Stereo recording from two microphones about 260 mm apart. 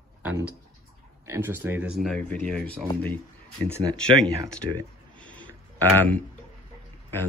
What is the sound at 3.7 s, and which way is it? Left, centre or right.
Speech, centre.